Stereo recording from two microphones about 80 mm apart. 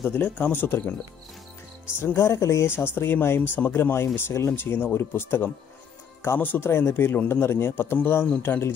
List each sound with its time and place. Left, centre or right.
0.2 s a man's voice: left
2.0 s speech: left
2.9 s a man's voice: left